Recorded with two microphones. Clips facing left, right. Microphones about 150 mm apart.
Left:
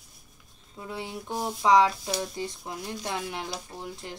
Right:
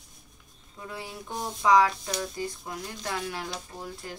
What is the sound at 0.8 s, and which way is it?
Speech, 25° left (ahead or behind).